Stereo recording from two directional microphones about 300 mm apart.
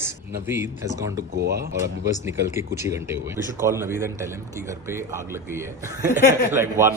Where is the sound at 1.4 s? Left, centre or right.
Right.